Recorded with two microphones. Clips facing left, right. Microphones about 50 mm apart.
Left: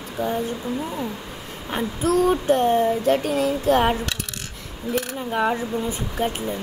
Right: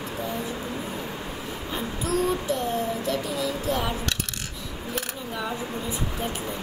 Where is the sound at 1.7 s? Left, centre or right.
Left.